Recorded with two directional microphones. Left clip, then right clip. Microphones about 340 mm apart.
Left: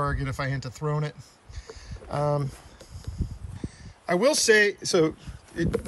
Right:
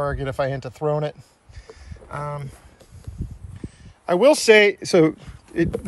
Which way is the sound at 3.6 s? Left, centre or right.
Centre.